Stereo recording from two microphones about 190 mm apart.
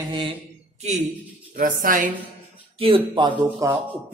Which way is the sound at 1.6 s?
45° right (ahead or behind).